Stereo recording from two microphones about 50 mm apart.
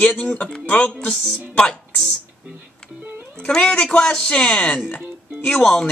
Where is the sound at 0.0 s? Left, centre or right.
Left.